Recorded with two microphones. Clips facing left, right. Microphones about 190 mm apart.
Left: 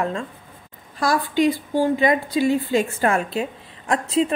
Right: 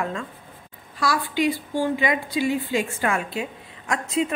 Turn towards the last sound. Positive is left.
turn(degrees=35)  # may be behind; listen again after turning